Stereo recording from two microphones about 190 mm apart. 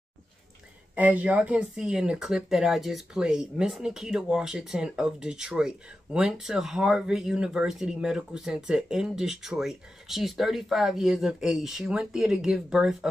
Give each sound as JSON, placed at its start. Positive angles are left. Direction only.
{"t": 0.9, "sound": "speech", "side_deg": -10}